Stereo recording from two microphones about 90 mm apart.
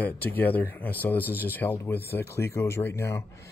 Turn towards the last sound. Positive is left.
turn(degrees=30)  # may be behind; listen again after turning